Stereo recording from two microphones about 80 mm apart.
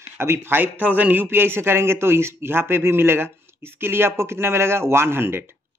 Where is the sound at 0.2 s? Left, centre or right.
Right.